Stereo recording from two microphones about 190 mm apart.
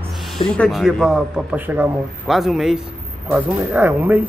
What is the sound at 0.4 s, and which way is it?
A man's voice, centre (ahead or behind).